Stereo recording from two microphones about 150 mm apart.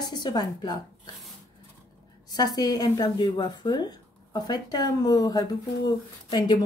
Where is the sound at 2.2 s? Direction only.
25° left (ahead or behind).